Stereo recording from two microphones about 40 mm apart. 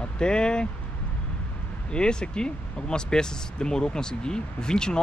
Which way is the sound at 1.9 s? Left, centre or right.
Left.